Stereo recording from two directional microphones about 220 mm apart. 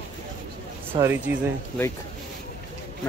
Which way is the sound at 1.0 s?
10° right (ahead or behind).